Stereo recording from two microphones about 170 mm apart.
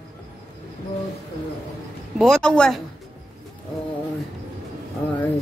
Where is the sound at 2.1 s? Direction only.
Centre (ahead or behind).